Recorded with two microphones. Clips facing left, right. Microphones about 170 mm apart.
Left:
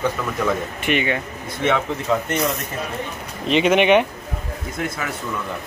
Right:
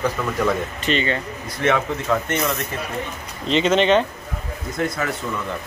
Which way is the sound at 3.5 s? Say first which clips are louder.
Left 1 dB; 15° left (ahead or behind).